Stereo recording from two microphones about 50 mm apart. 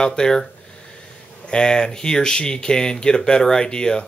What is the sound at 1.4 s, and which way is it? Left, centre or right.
Speech, centre.